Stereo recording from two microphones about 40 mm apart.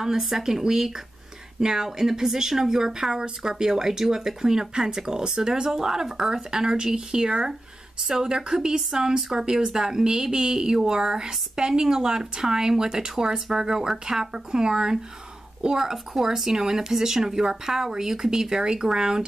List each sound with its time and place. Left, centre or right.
0.0 s speech: centre